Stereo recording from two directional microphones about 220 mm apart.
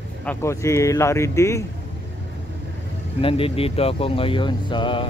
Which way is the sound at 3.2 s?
25° left (ahead or behind).